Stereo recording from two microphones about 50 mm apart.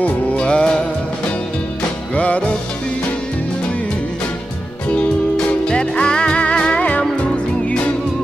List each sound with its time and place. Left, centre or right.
0.0 s music: left
2.1 s music: left
5.7 s music: centre
6.8 s music: left